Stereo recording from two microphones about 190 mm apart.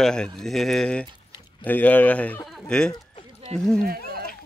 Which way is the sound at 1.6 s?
10° left (ahead or behind).